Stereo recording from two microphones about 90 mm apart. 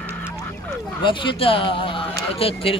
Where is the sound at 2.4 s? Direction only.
90° left.